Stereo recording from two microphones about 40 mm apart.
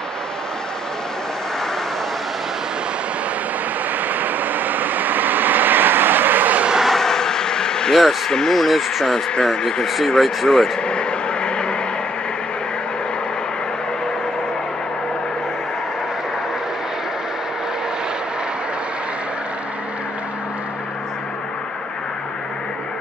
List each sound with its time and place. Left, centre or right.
4.1 s vehicle: right
6.8 s vehicle: centre
7.9 s speech: centre
8.3 s speech: centre
9.4 s speech: centre
9.8 s speech: centre
10.8 s vehicle: left